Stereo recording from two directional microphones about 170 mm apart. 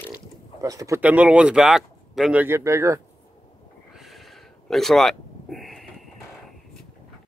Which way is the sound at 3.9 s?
Centre (ahead or behind).